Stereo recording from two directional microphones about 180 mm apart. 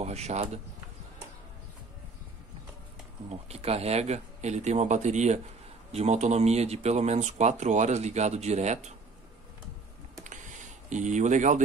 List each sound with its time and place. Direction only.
0.0 s speech: 35° right (ahead or behind)
3.3 s speech: 35° right (ahead or behind)
10.2 s a sound: 45° right (ahead or behind)